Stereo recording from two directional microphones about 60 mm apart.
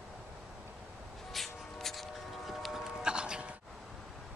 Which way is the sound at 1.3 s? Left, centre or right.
Centre.